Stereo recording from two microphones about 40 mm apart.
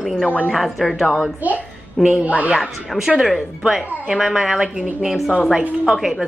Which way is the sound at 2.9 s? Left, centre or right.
Centre.